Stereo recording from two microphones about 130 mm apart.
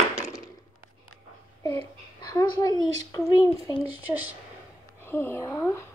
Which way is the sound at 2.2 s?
30° left (ahead or behind).